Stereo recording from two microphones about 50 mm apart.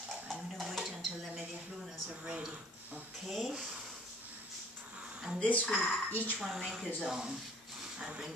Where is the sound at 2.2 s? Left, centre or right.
Right.